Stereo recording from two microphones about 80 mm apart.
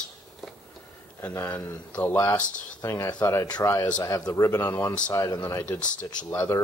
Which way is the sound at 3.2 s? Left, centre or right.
Left.